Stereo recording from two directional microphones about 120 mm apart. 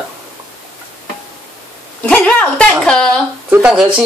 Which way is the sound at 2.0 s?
10° left (ahead or behind).